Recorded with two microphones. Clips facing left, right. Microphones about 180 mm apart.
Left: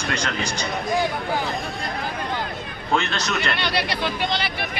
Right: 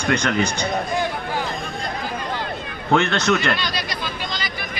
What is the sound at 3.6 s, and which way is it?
Speech, 65° left (ahead or behind).